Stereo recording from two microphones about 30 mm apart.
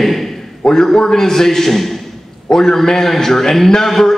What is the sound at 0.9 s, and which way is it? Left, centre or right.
A man's voice, centre.